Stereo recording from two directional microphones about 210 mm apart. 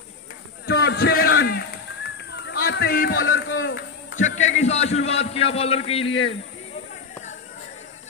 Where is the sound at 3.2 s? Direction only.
65° left (ahead or behind).